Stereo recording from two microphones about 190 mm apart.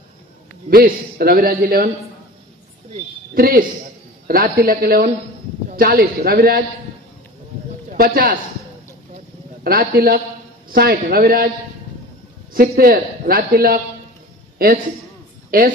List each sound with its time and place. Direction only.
0.7 s a man's voice: 50° right (ahead or behind)
3.3 s a man's voice: 50° right (ahead or behind)
7.9 s a man's voice: 50° right (ahead or behind)
9.6 s a man's voice: 50° right (ahead or behind)
12.5 s a man's voice: 50° right (ahead or behind)